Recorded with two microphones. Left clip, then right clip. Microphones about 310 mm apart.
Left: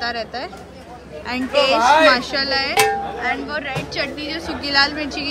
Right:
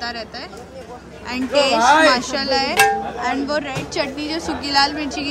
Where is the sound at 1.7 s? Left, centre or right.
Right.